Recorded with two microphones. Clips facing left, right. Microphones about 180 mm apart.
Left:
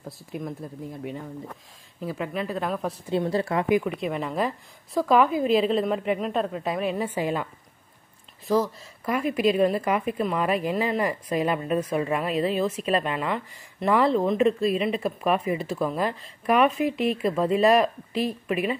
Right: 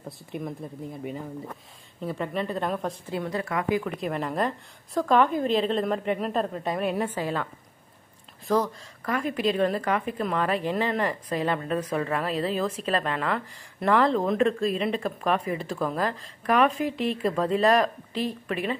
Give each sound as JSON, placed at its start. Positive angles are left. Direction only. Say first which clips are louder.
{"t": 0.0, "sound": "a woman's voice", "louder": "even", "side_deg": 0}
{"t": 3.1, "sound": "a woman's voice", "louder": "left 7 dB", "side_deg": 30}
{"t": 3.8, "sound": "a woman's voice", "louder": "left 1 dB", "side_deg": 0}
{"t": 7.2, "sound": "a woman's voice", "louder": "left 2 dB", "side_deg": 15}
{"t": 8.5, "sound": "a woman's voice", "louder": "left 1 dB", "side_deg": 5}
{"t": 16.8, "sound": "speech", "louder": "left 3 dB", "side_deg": -35}
{"t": 17.2, "sound": "a woman's voice", "louder": "left 1 dB", "side_deg": 10}